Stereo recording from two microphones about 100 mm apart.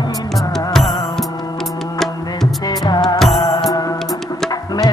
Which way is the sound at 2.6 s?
40° left (ahead or behind).